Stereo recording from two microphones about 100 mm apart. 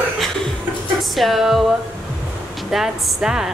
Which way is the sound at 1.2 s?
Centre (ahead or behind).